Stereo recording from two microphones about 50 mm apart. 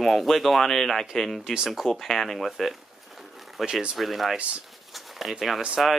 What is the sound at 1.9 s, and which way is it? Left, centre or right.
Speech, centre.